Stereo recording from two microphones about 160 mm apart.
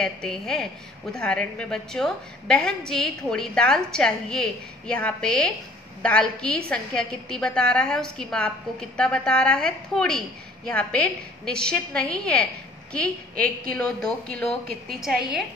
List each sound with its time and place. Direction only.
0.0 s a woman's voice: 5° left (ahead or behind)